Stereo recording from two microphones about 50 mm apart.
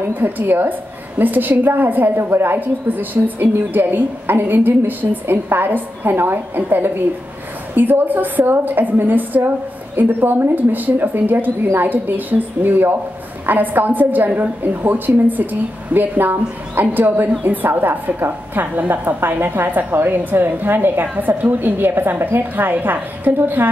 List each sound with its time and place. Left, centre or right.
0.1 s a woman's voice: right
2.1 s a woman's voice: right